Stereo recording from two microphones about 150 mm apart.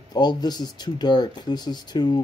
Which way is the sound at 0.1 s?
25° left (ahead or behind).